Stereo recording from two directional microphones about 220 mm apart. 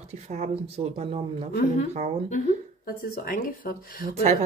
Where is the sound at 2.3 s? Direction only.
40° left (ahead or behind).